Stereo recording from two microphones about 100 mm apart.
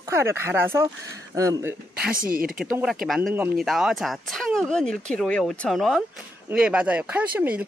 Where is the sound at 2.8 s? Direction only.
Centre (ahead or behind).